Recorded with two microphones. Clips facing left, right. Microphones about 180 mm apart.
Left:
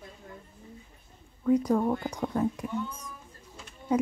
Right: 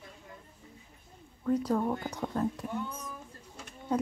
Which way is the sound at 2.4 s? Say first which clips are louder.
Left 3 dB; 10° left (ahead or behind).